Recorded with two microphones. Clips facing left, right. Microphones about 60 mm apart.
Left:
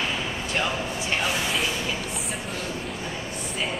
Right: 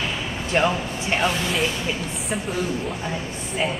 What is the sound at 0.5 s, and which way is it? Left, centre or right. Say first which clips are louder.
Speech: right 7 dB; right.